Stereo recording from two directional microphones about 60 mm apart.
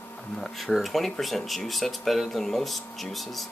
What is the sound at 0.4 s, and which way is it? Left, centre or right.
Speech, centre.